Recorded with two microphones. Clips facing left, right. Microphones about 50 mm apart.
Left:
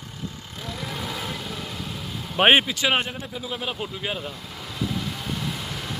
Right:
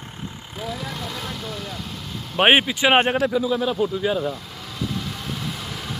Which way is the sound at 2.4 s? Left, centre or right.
Centre.